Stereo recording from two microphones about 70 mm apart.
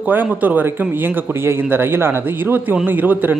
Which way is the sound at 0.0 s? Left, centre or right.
Right.